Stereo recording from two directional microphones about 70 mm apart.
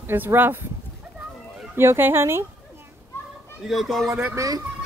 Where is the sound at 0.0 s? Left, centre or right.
Right.